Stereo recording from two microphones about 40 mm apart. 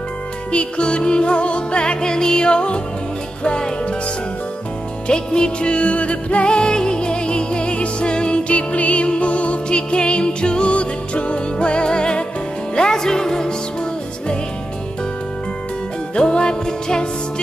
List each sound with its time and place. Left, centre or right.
0.5 s music: left
5.0 s music: left
9.7 s music: left
16.2 s music: left